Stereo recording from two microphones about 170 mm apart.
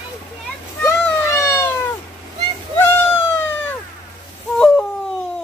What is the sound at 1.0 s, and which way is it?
Cat, 15° left (ahead or behind).